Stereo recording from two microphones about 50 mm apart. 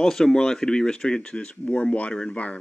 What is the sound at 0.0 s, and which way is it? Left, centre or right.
Speech, centre.